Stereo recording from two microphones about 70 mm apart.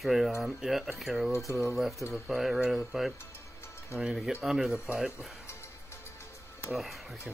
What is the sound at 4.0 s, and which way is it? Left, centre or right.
Speech, centre.